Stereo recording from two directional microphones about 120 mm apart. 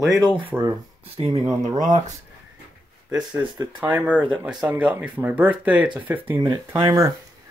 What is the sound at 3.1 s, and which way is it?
Speech, 10° right (ahead or behind).